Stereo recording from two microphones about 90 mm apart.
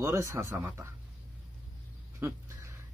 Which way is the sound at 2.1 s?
30° right (ahead or behind).